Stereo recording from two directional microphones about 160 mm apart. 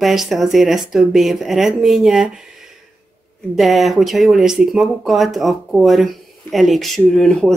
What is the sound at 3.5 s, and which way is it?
Speech, centre (ahead or behind).